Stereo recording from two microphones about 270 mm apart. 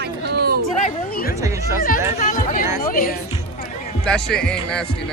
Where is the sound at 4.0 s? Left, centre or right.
Centre.